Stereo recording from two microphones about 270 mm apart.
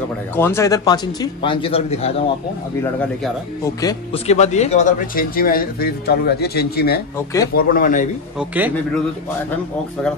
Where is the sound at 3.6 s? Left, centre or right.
Centre; by 7.0 s left.